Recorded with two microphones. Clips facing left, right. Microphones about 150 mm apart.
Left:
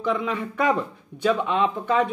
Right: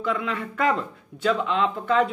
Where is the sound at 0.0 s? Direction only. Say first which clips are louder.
Left 2 dB; 15° left (ahead or behind).